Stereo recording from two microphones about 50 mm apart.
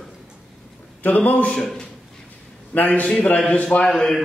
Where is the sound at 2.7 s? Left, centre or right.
Left.